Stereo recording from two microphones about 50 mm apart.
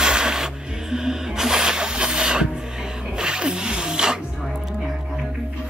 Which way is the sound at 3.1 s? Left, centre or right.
Centre.